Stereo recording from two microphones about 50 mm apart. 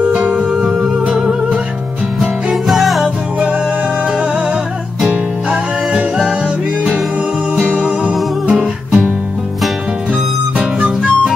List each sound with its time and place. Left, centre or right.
0.0 s music: right
0.6 s music: centre
2.1 s music: centre
7.8 s music: right
10.6 s music: right